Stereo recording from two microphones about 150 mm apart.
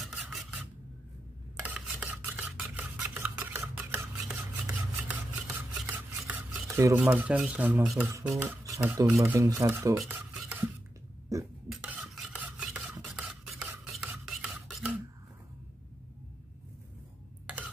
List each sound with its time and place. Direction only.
0.0 s a sound: centre (ahead or behind)
1.6 s stir: 10° right (ahead or behind)
5.8 s chopping: 5° right (ahead or behind)
7.0 s speech: 10° right (ahead or behind)
9.2 s speech: 20° right (ahead or behind)
9.9 s stir: centre (ahead or behind)
11.3 s a sound: 20° right (ahead or behind)
11.7 s stir: 5° right (ahead or behind)